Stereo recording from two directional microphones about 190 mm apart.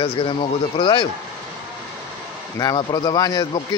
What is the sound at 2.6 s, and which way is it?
Speech, 20° left (ahead or behind).